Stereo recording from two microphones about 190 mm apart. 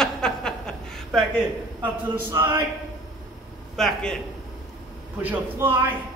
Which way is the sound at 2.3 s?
15° right (ahead or behind).